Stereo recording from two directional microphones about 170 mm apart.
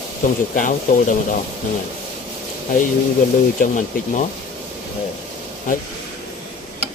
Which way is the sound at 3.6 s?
50° left (ahead or behind).